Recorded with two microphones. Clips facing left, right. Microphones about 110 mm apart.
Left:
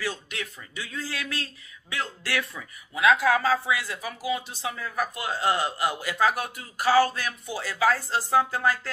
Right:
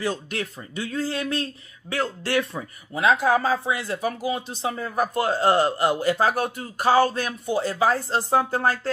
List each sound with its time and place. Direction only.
0.1 s speech: 40° right (ahead or behind)
2.2 s a woman's voice: 25° right (ahead or behind)
4.0 s a woman's voice: 40° right (ahead or behind)